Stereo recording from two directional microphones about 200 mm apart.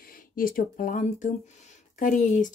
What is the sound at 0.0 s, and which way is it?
Speech, 45° left (ahead or behind).